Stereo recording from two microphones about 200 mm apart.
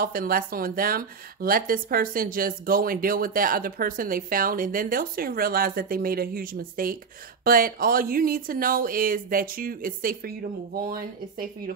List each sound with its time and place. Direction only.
0.0 s speech: 45° right (ahead or behind)